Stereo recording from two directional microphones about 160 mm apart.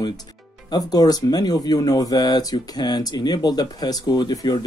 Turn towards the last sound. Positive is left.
turn(degrees=25)  # may be behind; listen again after turning